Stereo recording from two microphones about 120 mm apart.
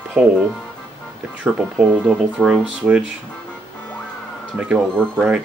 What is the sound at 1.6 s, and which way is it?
Speech, 5° right (ahead or behind).